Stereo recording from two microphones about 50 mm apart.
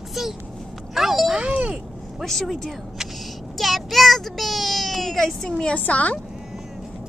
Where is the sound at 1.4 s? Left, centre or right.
Right.